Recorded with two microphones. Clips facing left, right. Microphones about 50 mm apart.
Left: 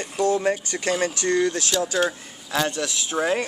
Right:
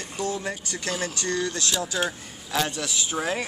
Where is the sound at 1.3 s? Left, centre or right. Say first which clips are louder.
Left 7 dB; left.